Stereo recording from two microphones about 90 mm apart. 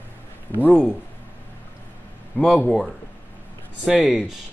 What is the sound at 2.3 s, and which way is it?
Speech, 20° left (ahead or behind).